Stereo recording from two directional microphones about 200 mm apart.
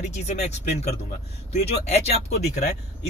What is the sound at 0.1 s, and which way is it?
Speech, 35° left (ahead or behind).